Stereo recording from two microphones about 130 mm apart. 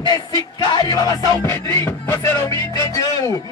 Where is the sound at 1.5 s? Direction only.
20° left (ahead or behind).